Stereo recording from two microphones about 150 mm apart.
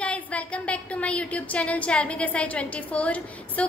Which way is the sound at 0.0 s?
10° left (ahead or behind).